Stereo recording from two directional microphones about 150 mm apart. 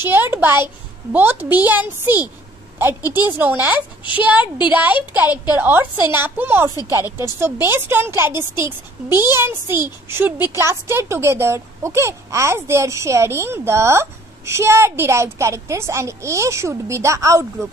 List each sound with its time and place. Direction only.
0.1 s a woman's voice: 15° right (ahead or behind)